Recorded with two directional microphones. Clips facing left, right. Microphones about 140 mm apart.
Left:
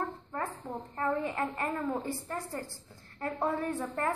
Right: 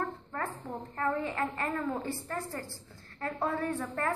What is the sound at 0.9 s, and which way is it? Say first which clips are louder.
A woman's voice: even; 20° left (ahead or behind).